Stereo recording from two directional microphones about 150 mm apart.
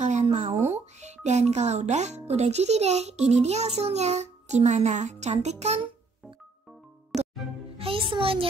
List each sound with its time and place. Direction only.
0.0 s a sound: 50° right (ahead or behind)
0.7 s speech: 50° right (ahead or behind)
7.1 s music: centre (ahead or behind)
7.7 s a child's voice: 40° right (ahead or behind)